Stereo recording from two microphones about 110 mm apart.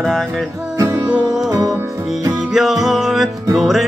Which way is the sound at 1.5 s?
30° right (ahead or behind).